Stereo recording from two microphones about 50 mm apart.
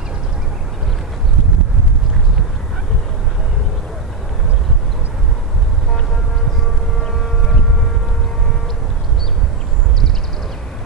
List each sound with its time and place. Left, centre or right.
7.0 s civil defense siren: centre